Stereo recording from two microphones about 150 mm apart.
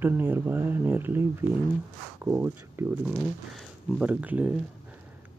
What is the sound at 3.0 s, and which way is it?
Speech, centre (ahead or behind).